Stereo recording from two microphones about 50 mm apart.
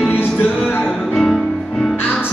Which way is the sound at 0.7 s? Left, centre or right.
Left.